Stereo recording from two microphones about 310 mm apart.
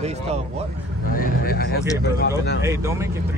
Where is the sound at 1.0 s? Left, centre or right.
Left.